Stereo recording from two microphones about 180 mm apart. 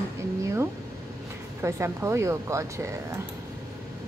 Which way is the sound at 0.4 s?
15° right (ahead or behind).